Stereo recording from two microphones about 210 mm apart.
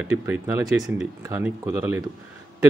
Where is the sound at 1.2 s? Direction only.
15° right (ahead or behind).